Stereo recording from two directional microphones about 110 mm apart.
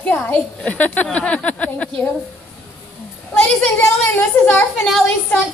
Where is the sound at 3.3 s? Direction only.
15° left (ahead or behind).